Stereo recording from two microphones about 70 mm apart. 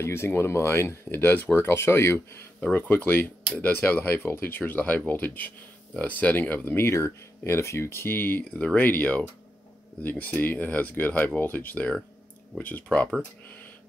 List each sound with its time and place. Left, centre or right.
0.0 s speech: left
2.7 s speech: left